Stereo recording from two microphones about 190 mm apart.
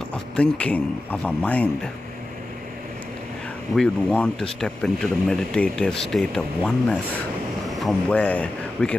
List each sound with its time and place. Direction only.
0.1 s speech: 5° left (ahead or behind)
3.7 s speech: 5° left (ahead or behind)